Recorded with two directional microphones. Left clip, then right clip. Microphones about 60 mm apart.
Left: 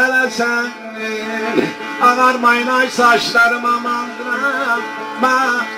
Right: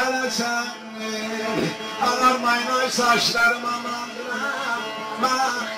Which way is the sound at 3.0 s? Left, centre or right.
Centre.